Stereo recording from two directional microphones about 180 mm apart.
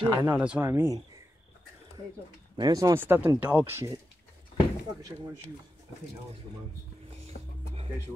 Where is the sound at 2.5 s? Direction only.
20° right (ahead or behind).